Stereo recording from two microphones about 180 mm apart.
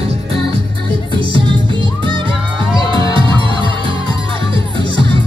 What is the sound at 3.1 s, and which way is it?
Music, 30° right (ahead or behind).